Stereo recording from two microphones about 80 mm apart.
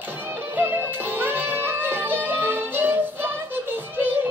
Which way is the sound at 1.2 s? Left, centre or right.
Right.